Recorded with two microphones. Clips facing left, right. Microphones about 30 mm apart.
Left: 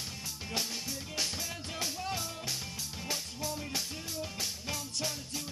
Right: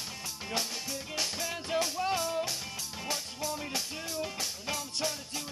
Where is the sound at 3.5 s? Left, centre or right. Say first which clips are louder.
Right 3 dB; right.